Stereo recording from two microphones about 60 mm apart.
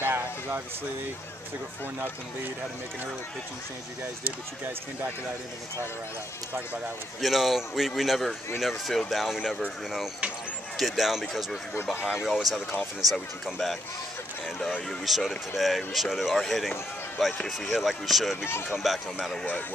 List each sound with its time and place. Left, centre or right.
0.0 s a sound: right
7.2 s speech: centre
10.8 s speech: centre
11.9 s speech: centre
12.3 s speech: centre
18.4 s speech: left
18.7 s speech: centre